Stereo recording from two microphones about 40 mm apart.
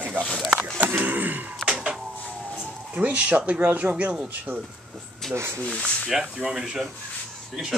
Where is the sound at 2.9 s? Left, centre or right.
Right.